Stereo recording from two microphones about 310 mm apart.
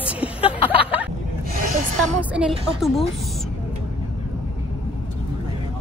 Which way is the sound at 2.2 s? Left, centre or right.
Centre.